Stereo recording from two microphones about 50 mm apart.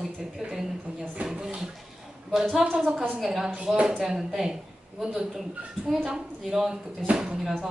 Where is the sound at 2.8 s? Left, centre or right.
Centre.